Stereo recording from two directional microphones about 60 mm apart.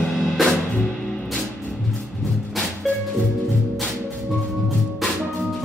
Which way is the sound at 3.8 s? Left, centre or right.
Centre.